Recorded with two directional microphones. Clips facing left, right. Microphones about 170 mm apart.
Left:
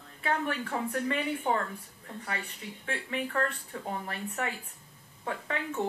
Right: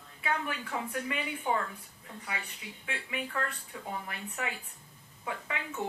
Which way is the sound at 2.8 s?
40° left (ahead or behind).